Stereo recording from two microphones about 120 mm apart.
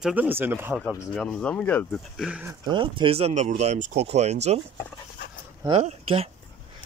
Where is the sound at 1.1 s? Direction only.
5° left (ahead or behind).